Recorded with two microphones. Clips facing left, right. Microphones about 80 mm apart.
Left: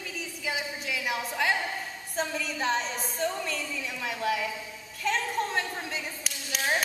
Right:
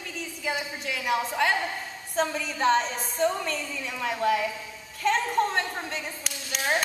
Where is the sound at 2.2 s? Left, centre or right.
Centre.